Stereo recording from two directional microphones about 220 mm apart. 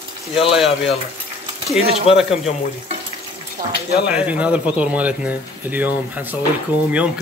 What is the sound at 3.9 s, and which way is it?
Speech, 5° right (ahead or behind).